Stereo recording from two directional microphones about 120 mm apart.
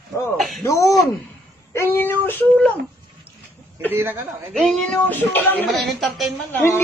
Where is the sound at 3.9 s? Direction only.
15° right (ahead or behind).